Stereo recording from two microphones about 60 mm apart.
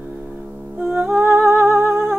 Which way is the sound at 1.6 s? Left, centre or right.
Centre.